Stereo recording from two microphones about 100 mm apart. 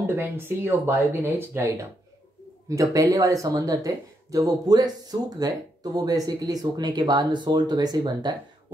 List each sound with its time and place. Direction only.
0.0 s speech: 20° right (ahead or behind); by 8.4 s 45° right (ahead or behind)